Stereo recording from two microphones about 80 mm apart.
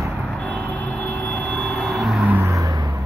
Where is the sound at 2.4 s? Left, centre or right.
Right.